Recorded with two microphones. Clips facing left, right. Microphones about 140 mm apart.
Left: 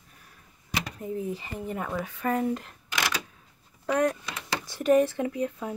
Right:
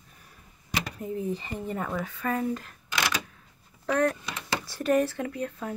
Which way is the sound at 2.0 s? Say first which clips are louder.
Left 5 dB; 20° left (ahead or behind).